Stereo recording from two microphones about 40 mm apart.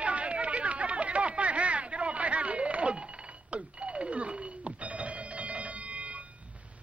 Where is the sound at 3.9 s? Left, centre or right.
Right.